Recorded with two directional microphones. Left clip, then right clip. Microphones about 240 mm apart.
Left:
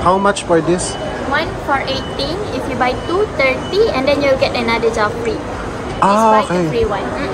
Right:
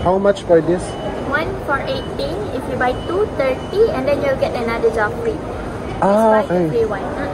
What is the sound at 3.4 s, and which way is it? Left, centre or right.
A woman's voice, left.